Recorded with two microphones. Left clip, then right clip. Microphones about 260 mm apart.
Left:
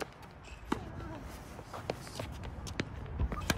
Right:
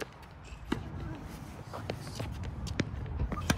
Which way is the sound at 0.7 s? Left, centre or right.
Left.